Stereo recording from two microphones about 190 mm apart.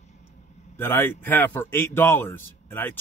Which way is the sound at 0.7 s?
15° left (ahead or behind).